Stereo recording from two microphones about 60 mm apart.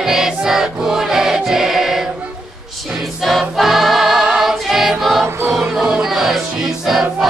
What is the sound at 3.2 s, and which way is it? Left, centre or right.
Music, centre.